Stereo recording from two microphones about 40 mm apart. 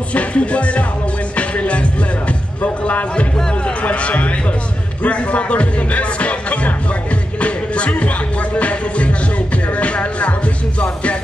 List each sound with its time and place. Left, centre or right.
0.1 s speech: left
7.3 s music: left
9.7 s speech: left